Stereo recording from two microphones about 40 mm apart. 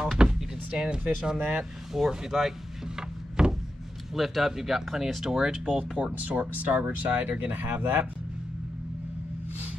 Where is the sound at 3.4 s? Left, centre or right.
Centre.